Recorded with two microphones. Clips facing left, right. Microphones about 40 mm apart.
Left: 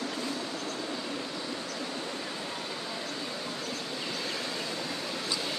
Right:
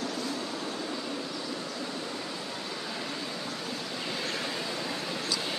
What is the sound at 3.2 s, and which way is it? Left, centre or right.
Vehicle, centre.